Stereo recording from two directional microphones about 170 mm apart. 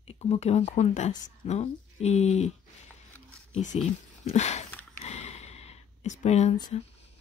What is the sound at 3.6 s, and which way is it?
Speech, 45° left (ahead or behind).